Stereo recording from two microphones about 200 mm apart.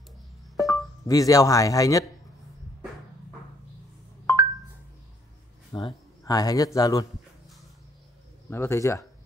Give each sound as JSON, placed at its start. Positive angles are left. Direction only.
{"t": 0.6, "sound": "music", "side_deg": 0}
{"t": 1.0, "sound": "speech", "side_deg": 15}
{"t": 5.7, "sound": "speech", "side_deg": 20}
{"t": 8.5, "sound": "speech", "side_deg": 15}